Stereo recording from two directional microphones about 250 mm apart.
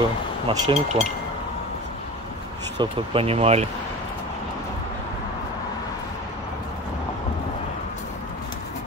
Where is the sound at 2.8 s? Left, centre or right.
Right.